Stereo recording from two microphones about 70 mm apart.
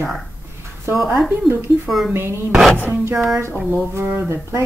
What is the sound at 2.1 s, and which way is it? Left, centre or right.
Speech, right.